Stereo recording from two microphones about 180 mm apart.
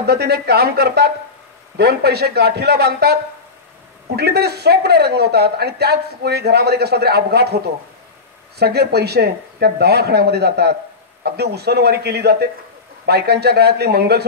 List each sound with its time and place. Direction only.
0.0 s speech: 65° right (ahead or behind)
4.2 s speech: 65° right (ahead or behind)